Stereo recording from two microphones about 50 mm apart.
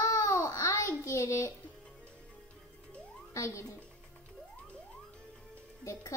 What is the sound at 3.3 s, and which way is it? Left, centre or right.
Speech, left.